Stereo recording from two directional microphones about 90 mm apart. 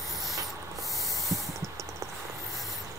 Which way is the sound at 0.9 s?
Centre (ahead or behind).